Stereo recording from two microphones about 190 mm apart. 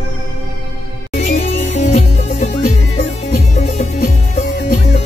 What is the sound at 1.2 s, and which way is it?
Music, 35° left (ahead or behind).